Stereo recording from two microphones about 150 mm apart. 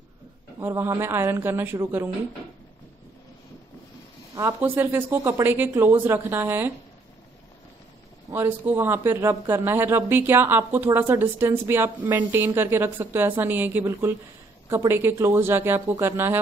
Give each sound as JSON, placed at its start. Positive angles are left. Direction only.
{"t": 0.6, "sound": "speech", "side_deg": -15}
{"t": 4.4, "sound": "speech", "side_deg": -20}
{"t": 8.3, "sound": "speech", "side_deg": -15}